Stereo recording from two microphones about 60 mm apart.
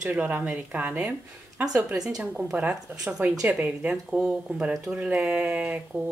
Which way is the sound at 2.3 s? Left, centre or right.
Centre.